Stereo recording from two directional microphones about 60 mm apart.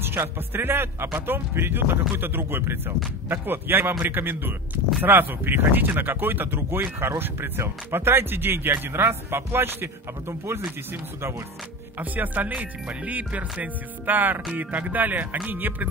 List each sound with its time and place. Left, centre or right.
0.0 s speech: right
12.0 s speech: right